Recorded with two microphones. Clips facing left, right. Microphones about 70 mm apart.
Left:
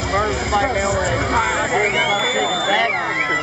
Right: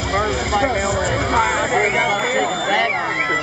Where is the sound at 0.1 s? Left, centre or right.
Centre.